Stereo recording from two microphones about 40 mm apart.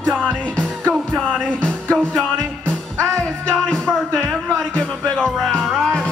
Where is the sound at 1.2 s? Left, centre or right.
Left.